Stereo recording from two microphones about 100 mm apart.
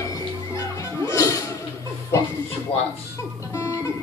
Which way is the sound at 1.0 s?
30° left (ahead or behind).